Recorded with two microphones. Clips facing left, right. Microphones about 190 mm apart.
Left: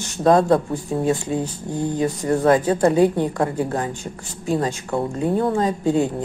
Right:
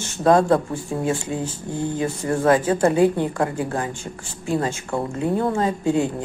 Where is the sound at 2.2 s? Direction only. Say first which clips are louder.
Left 1 dB; 20° left (ahead or behind).